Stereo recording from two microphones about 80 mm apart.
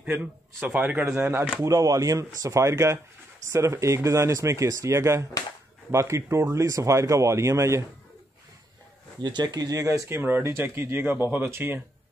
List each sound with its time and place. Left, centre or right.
0.0 s speech: right
1.6 s speech: right
9.2 s speech: right